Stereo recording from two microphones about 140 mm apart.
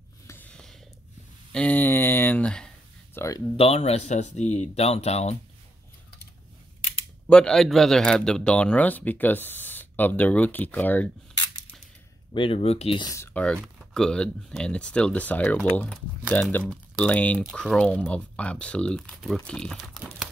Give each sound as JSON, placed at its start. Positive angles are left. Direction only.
{"t": 0.3, "sound": "snort", "side_deg": 10}
{"t": 1.5, "sound": "a sound", "side_deg": 10}
{"t": 3.2, "sound": "speech", "side_deg": 25}
{"t": 3.5, "sound": "speech", "side_deg": 45}
{"t": 7.2, "sound": "a man's voice", "side_deg": 5}
{"t": 12.4, "sound": "speech", "side_deg": 45}
{"t": 13.0, "sound": "speech", "side_deg": 20}
{"t": 13.3, "sound": "a man's voice", "side_deg": 5}